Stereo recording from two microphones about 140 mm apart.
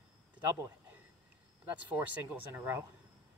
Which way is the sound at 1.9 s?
10° right (ahead or behind).